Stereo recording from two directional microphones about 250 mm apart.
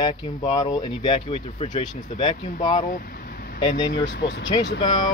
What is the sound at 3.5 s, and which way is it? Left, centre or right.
Speech, centre.